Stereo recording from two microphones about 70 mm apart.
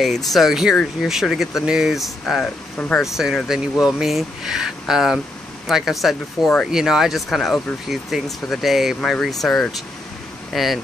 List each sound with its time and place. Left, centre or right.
0.0 s speech: centre
2.4 s speech: centre
3.0 s speech: centre